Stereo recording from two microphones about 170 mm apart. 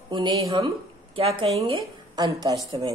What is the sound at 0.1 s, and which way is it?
Speech, 25° right (ahead or behind).